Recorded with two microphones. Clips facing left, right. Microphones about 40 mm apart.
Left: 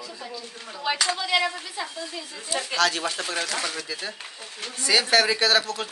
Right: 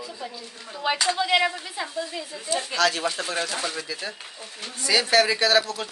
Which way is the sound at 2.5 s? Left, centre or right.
Left.